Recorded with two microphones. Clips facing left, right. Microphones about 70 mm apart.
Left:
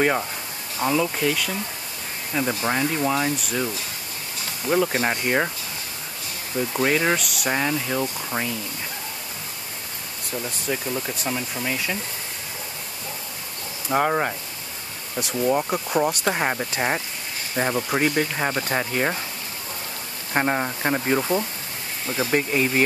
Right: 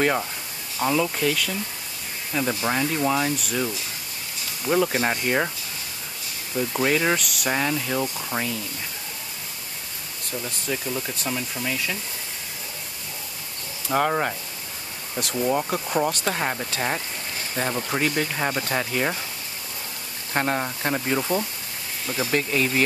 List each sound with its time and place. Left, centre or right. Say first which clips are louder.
0.0 s speech: left 1 dB; centre
6.7 s speech: left 1 dB; centre
10.4 s speech: left 2 dB; centre
13.9 s speech: left 1 dB; centre
20.3 s speech: left 2 dB; centre